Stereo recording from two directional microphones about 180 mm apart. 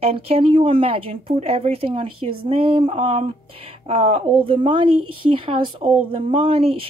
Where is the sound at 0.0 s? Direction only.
30° right (ahead or behind).